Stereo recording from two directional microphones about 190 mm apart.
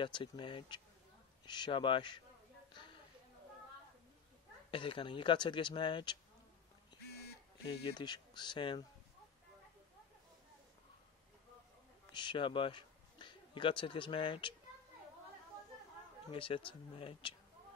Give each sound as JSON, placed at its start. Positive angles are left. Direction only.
{"t": 0.0, "sound": "speech", "side_deg": 25}
{"t": 4.6, "sound": "speech", "side_deg": 25}
{"t": 7.6, "sound": "speech", "side_deg": 25}
{"t": 12.1, "sound": "a man's voice", "side_deg": 25}
{"t": 16.3, "sound": "speech", "side_deg": 30}